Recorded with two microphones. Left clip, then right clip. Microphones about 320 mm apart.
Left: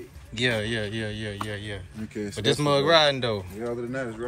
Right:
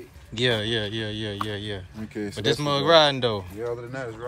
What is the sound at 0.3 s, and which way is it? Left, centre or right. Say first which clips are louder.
Speech: right 2 dB; centre.